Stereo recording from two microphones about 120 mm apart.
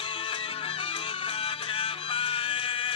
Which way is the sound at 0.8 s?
50° left (ahead or behind).